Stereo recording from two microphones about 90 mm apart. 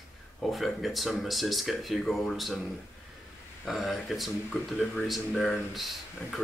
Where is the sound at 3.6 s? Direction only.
Centre (ahead or behind).